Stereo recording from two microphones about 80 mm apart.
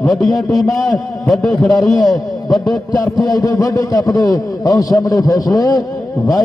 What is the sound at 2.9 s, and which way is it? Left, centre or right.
A man's voice, left.